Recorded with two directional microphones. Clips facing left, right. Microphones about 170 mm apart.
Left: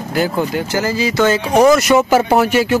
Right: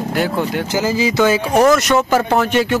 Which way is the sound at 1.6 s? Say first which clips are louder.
Left 3 dB; 5° left (ahead or behind).